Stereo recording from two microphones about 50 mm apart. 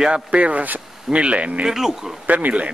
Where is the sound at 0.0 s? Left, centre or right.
Right.